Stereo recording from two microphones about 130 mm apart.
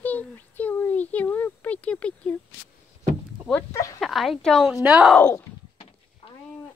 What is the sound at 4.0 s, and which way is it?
A woman's voice, centre (ahead or behind).